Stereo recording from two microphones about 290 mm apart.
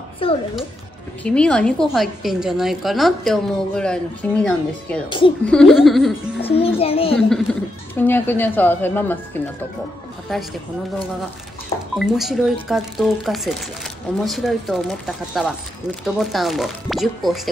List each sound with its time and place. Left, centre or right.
0.2 s a child's voice: centre
1.2 s a woman's voice: centre
6.5 s a child's voice: centre
7.2 s a woman's voice: centre
12.0 s a woman's voice: centre